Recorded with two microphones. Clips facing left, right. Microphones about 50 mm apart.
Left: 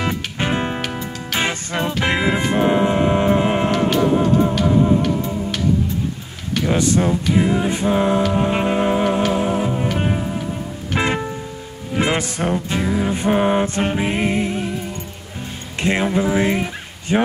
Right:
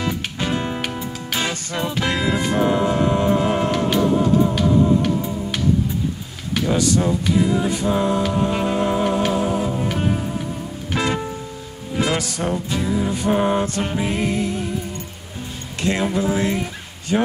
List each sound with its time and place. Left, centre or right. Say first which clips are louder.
0.0 s music: left 2 dB; left
5.0 s music: left 1 dB; centre
6.7 s music: left 1 dB; left
15.8 s music: left 2 dB; left